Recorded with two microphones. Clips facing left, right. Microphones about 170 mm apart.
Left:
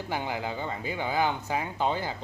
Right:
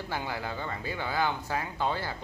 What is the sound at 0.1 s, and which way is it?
Speech, 15° left (ahead or behind).